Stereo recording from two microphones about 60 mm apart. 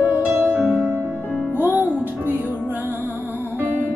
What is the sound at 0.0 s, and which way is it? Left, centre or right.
Music, right.